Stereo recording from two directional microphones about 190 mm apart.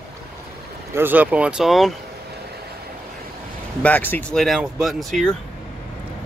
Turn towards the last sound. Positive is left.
turn(degrees=0)  # may be behind; listen again after turning